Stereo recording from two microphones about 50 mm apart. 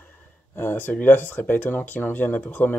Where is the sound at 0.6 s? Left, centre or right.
Left.